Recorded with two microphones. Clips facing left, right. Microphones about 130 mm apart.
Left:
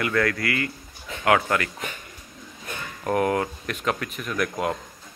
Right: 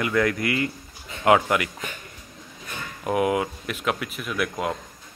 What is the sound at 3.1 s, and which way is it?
Speech, 10° right (ahead or behind).